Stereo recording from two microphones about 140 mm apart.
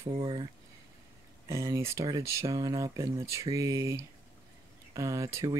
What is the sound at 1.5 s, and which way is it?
Speech, 20° right (ahead or behind).